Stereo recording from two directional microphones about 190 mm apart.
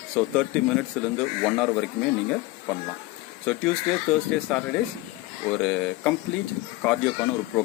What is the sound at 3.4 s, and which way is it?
Speech, 5° left (ahead or behind).